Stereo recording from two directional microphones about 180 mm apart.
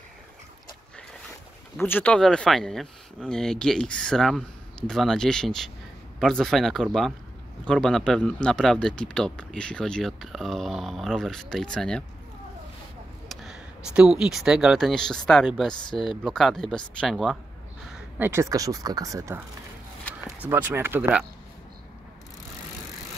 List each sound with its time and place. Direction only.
1.8 s speech: 10° left (ahead or behind)
13.3 s speech: centre (ahead or behind)
18.2 s speech: 15° right (ahead or behind)
20.4 s speech: 10° right (ahead or behind)